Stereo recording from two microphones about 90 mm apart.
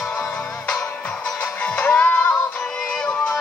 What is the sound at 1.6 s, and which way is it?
Music, 15° left (ahead or behind).